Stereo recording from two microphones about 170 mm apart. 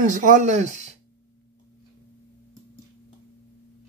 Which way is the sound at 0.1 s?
50° right (ahead or behind).